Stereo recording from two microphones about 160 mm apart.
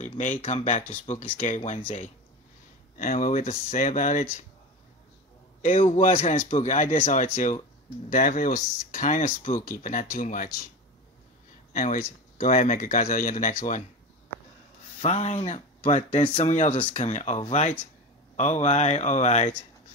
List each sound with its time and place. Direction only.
0.0 s speech: 50° left (ahead or behind)
3.0 s speech: 55° left (ahead or behind)
5.8 s speech: 50° left (ahead or behind)
11.7 s speech: 55° left (ahead or behind)
15.0 s speech: 40° left (ahead or behind)